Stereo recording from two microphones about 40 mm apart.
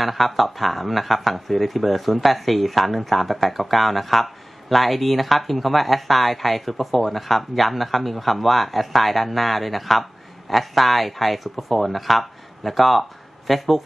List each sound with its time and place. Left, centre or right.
0.0 s speech: centre